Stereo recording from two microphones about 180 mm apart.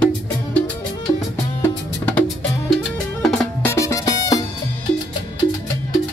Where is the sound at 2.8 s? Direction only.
5° left (ahead or behind); by 4.4 s 20° left (ahead or behind).